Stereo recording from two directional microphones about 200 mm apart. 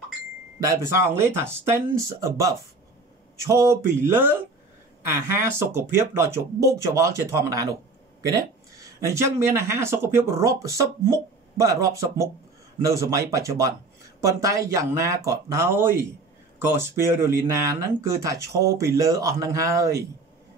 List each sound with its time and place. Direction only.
0.6 s speech: 15° right (ahead or behind)